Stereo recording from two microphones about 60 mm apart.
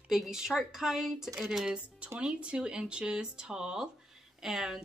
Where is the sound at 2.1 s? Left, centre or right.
Centre.